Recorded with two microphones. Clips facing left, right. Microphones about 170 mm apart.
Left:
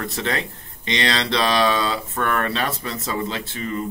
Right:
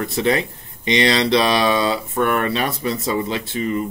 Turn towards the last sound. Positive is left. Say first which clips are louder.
# right 5 dB
turn(degrees=-15)  # may be behind; listen again after turning